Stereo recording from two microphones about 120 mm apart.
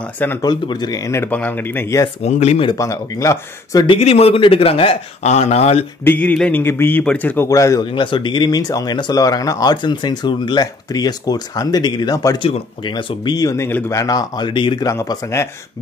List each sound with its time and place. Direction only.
0.4 s speech: 35° left (ahead or behind)
1.3 s a man's voice: 15° left (ahead or behind)
2.2 s speech: 65° left (ahead or behind)
2.8 s speech: 25° left (ahead or behind)
3.8 s speech: 50° left (ahead or behind)
6.0 s a man's voice: 15° left (ahead or behind)
7.4 s speech: 30° left (ahead or behind)
7.8 s speech: 45° left (ahead or behind)
12.4 s speech: 40° left (ahead or behind)
13.7 s speech: 20° left (ahead or behind); by 14.9 s 45° left (ahead or behind)
14.9 s speech: 25° left (ahead or behind)